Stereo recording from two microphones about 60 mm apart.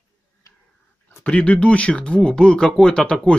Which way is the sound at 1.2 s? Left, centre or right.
Left.